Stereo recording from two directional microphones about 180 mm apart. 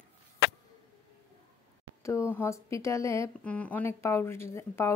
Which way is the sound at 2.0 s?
15° left (ahead or behind).